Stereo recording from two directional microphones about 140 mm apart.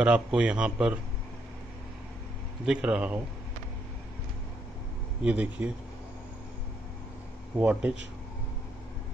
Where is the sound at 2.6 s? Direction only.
5° right (ahead or behind).